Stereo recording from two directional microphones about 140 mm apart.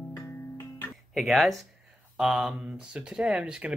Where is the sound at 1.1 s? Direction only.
Centre (ahead or behind).